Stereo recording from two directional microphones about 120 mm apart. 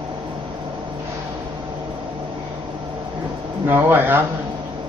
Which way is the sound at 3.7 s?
20° right (ahead or behind).